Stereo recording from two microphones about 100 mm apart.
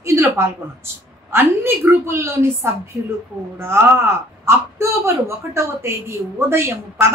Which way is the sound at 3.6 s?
25° right (ahead or behind).